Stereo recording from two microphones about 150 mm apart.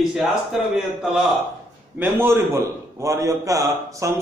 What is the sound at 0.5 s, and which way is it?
Speech, 5° right (ahead or behind).